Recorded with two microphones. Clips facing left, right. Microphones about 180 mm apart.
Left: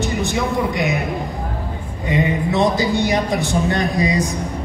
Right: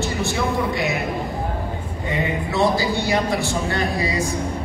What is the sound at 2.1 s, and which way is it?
A man's voice, 20° left (ahead or behind).